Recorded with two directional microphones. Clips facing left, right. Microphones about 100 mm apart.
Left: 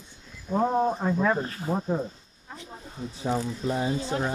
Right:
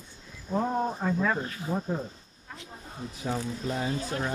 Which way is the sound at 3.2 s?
25° left (ahead or behind).